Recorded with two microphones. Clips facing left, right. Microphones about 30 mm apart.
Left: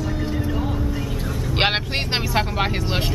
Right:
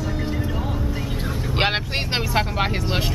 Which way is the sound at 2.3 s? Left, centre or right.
Centre.